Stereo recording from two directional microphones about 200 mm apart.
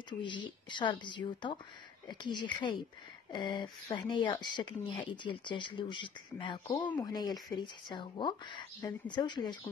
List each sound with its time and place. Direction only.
0.2 s speech: 25° left (ahead or behind)